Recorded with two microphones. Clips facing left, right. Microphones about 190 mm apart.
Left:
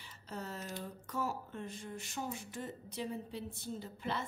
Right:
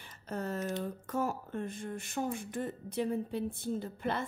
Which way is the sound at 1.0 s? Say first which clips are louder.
Right 2 dB; 50° right (ahead or behind).